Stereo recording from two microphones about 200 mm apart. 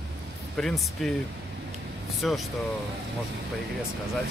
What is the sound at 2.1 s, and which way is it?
Speech, centre (ahead or behind).